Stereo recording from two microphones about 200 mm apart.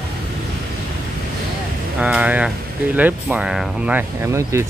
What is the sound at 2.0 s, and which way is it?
Speech, 5° right (ahead or behind).